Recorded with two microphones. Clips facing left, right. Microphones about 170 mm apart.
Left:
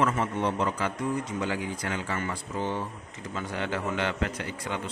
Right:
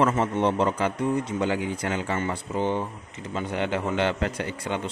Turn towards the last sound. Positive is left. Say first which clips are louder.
# right 4 dB
turn(degrees=-30)  # may be behind; listen again after turning